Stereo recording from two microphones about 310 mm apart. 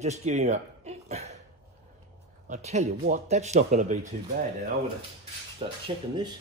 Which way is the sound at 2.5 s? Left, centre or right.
Right.